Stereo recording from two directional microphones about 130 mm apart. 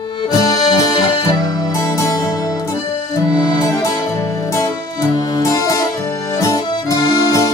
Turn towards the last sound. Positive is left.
turn(degrees=30)  # may be behind; listen again after turning